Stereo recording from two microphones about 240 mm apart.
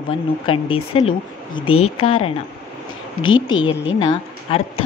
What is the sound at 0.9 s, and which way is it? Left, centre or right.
A woman's voice, left.